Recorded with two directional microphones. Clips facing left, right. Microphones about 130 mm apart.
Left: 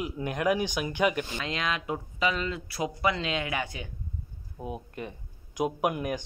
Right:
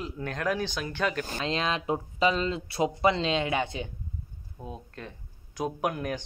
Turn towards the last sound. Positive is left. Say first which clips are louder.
# left 2 dB
turn(degrees=10)  # may be behind; listen again after turning